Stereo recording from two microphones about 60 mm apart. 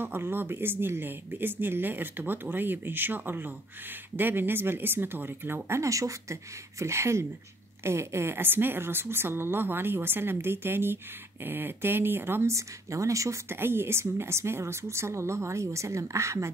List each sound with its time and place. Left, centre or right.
0.0 s a woman's voice: right
5.8 s speech: right
6.8 s a woman's voice: right
12.4 s speech: right
13.5 s a woman's voice: right